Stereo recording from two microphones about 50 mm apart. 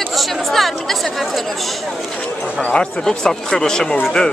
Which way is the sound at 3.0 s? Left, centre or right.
Centre.